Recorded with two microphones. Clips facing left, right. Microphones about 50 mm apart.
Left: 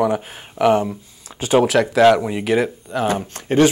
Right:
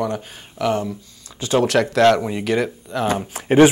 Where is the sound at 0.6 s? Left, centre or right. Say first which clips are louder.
Left 5 dB; left.